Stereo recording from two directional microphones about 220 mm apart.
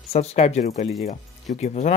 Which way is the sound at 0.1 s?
30° left (ahead or behind).